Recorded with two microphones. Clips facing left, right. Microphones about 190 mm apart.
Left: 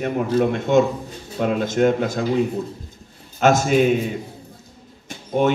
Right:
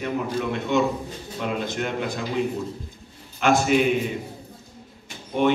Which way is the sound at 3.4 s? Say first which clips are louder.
Left 3 dB; 45° left (ahead or behind).